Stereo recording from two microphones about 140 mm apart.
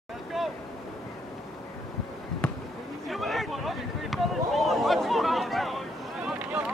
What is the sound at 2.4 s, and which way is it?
Basketball bounce, 10° left (ahead or behind).